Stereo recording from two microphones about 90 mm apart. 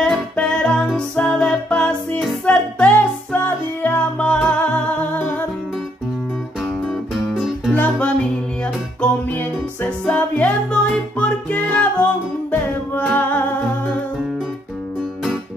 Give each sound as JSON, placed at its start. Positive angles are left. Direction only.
{"t": 0.0, "sound": "music", "side_deg": 10}
{"t": 6.9, "sound": "music", "side_deg": -5}
{"t": 7.7, "sound": "music", "side_deg": 15}
{"t": 9.3, "sound": "music", "side_deg": 20}